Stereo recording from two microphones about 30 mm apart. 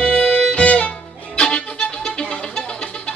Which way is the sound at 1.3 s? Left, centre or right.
Left.